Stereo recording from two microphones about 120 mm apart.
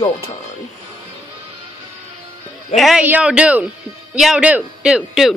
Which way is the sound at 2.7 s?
Centre (ahead or behind).